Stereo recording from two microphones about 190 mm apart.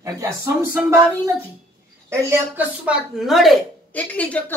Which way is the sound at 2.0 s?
10° right (ahead or behind).